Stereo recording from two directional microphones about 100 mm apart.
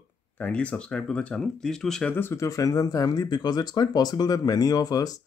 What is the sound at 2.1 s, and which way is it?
Speech, 25° left (ahead or behind).